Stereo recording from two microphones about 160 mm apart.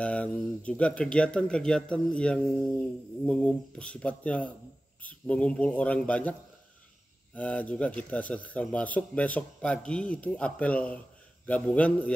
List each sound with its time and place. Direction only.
0.0 s speech: 10° left (ahead or behind)
7.3 s speech: 10° left (ahead or behind)